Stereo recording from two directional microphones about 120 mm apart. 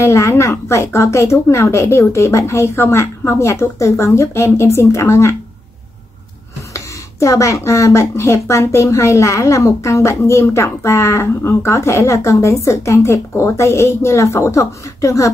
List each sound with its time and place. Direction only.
0.0 s speech: 25° left (ahead or behind)
6.7 s speech: 25° left (ahead or behind)